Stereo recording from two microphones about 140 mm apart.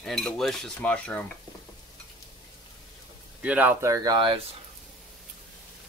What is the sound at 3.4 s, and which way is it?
Speech, 10° right (ahead or behind).